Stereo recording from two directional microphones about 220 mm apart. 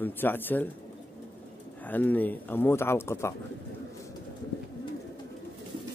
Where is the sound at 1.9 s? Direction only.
10° left (ahead or behind).